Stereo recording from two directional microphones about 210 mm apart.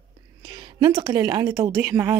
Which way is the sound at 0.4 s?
20° right (ahead or behind).